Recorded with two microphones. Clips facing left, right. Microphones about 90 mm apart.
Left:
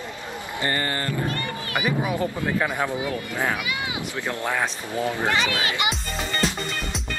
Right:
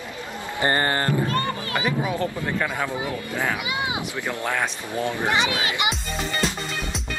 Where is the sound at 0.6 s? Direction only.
40° right (ahead or behind).